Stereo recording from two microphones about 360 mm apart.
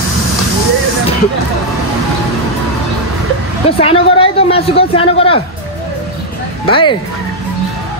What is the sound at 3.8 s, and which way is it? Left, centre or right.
A man's voice, centre.